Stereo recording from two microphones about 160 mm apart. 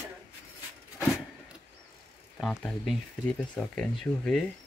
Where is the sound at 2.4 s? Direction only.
5° left (ahead or behind).